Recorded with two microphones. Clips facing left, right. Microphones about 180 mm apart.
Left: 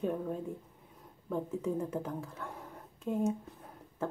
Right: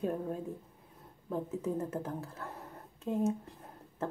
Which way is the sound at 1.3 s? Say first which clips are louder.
Left 1 dB; 5° right (ahead or behind).